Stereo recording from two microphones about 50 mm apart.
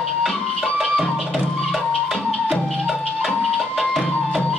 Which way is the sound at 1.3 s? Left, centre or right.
Centre.